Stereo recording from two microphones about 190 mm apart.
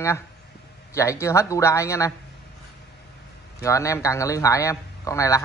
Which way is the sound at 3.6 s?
15° left (ahead or behind).